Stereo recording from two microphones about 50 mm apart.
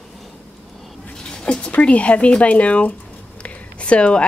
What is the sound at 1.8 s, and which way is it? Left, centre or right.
A woman's voice, left.